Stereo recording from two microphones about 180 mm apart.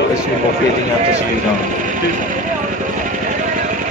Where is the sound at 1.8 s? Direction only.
45° right (ahead or behind).